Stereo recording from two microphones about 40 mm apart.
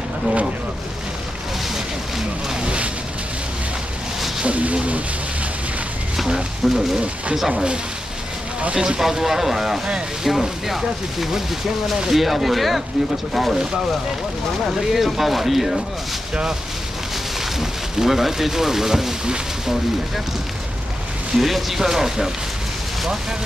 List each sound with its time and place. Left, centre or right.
2.6 s vehicle: right
4.4 s speech: right
6.1 s a sound: centre
7.3 s speech: centre
8.7 s speech: right
9.0 s speech: centre
14.8 s speech: centre
17.6 s speech: centre
19.2 s speech: centre
21.4 s speech: centre